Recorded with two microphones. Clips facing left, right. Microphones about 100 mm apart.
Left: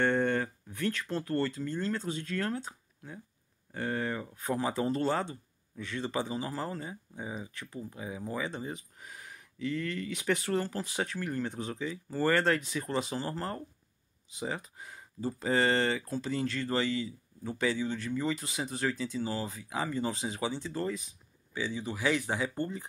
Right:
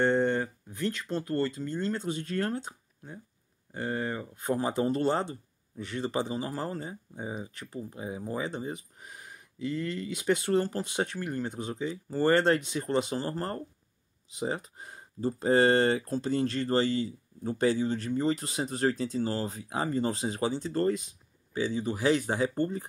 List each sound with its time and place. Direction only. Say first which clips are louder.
0.0 s a sound: right 2 dB; 20° right (ahead or behind)
1.1 s speech: right 3 dB; 20° right (ahead or behind)
4.6 s speech: right 2 dB; 30° right (ahead or behind)
21.5 s speech: right 5 dB; 40° right (ahead or behind)